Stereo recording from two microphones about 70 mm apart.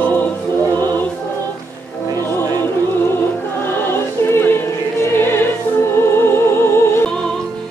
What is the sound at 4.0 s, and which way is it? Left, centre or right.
Music, left.